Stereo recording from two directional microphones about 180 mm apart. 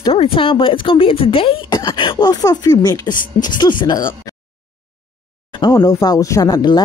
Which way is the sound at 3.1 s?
50° left (ahead or behind).